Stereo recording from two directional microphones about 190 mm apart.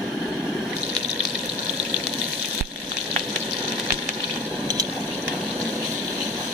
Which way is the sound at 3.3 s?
Centre (ahead or behind).